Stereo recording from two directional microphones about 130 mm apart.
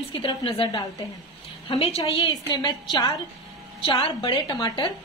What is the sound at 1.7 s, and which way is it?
A woman's voice, 50° left (ahead or behind).